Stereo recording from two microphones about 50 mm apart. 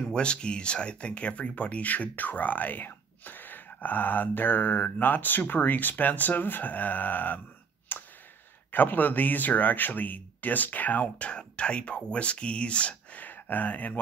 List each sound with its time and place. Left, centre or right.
0.1 s speech: centre; by 7.4 s left
7.9 s clicking: left
8.7 s speech: left
11.2 s speech: left